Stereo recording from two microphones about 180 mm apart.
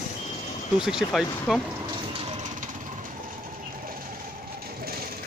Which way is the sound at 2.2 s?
40° right (ahead or behind).